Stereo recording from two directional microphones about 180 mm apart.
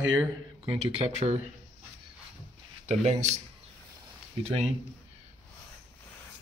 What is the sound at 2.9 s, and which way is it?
Speech, 40° right (ahead or behind).